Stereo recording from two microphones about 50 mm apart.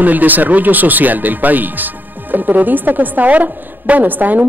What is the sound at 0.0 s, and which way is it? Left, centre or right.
Speech, right.